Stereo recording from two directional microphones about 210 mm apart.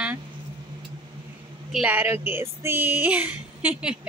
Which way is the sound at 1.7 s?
5° right (ahead or behind).